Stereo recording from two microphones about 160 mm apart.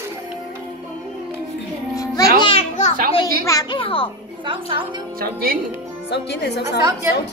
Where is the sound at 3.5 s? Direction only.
25° left (ahead or behind).